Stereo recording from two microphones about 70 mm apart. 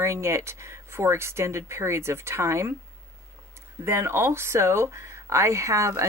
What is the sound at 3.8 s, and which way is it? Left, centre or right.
Speech, right.